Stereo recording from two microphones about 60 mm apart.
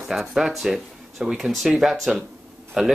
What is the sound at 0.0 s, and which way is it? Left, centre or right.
Speech, centre.